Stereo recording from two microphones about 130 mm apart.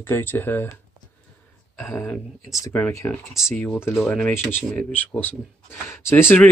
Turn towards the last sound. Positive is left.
turn(degrees=15)  # may be behind; listen again after turning